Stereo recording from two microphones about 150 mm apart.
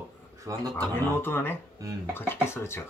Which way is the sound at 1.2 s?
15° left (ahead or behind).